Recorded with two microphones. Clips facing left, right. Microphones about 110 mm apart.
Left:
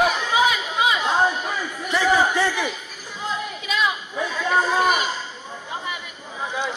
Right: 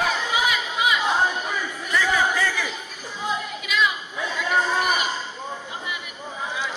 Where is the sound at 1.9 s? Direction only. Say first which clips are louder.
Left 3 dB; 30° left (ahead or behind).